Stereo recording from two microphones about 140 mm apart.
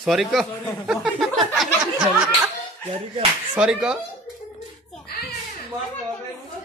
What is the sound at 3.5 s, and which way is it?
Speech, 5° right (ahead or behind).